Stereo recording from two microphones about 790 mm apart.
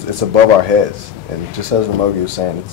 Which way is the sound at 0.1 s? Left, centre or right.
Right.